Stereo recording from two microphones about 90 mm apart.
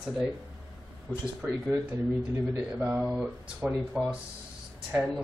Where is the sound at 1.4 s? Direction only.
20° right (ahead or behind).